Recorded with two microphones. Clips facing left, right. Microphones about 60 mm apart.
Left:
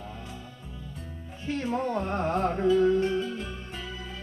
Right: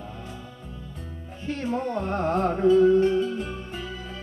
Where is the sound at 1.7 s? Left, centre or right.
Centre.